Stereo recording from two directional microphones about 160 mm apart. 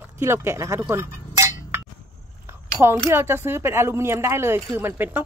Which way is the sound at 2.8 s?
5° right (ahead or behind).